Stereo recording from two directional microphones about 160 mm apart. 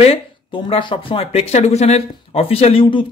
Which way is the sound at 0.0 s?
35° left (ahead or behind).